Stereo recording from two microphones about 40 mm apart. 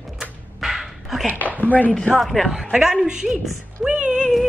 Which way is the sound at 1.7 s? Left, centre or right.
Left.